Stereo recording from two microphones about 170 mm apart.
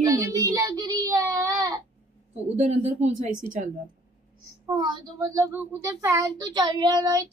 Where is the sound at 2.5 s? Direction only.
45° right (ahead or behind).